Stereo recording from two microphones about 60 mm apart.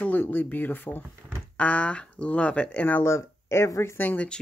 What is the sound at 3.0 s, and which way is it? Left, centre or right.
Speech, left.